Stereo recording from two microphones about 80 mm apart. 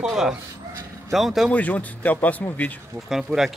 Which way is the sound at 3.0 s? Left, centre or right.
Centre.